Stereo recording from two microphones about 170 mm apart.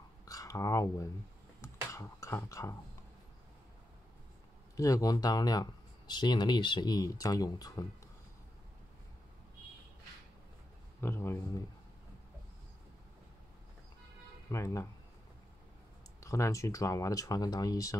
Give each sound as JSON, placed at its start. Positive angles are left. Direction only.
{"t": 0.2, "sound": "a sound", "side_deg": 20}
{"t": 4.7, "sound": "speech", "side_deg": 20}
{"t": 11.0, "sound": "speech", "side_deg": 15}
{"t": 14.5, "sound": "speech", "side_deg": 20}
{"t": 16.2, "sound": "speech", "side_deg": 20}